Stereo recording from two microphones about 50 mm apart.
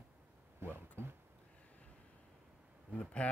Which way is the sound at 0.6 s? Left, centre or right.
Right.